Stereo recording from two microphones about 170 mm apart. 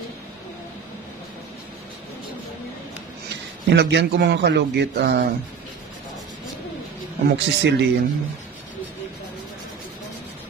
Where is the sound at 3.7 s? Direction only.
85° right.